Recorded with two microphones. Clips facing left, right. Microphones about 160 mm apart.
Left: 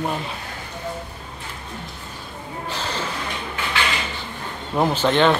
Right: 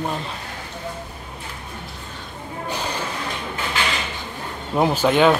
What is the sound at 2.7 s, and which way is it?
Music, 15° right (ahead or behind).